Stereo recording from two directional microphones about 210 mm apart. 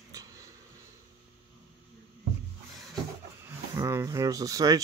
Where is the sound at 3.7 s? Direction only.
15° right (ahead or behind).